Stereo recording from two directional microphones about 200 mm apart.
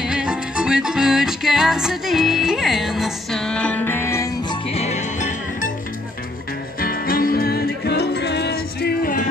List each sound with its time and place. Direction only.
0.0 s music: 5° right (ahead or behind); by 4.6 s 15° left (ahead or behind)
4.6 s music: 30° left (ahead or behind)
6.8 s music: 45° left (ahead or behind)